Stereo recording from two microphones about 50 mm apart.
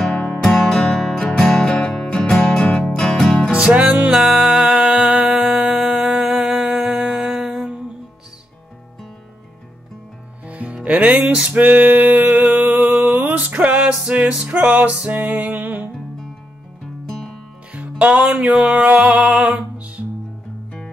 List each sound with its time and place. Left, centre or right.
0.0 s music: centre
3.0 s music: centre
3.5 s music: centre
4.0 s music: centre
5.4 s music: centre
10.4 s music: right
11.5 s a sound: right
14.3 s music: centre
16.8 s music: centre
17.7 s music: right